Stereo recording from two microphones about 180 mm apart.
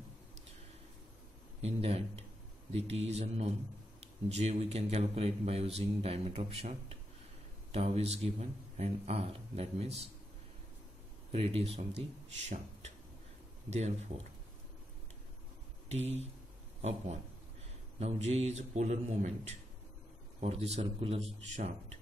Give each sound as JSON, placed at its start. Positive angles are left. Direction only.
{"t": 1.6, "sound": "speech", "side_deg": -35}
{"t": 11.3, "sound": "speech", "side_deg": -35}
{"t": 13.7, "sound": "speech", "side_deg": -40}
{"t": 15.9, "sound": "speech", "side_deg": -35}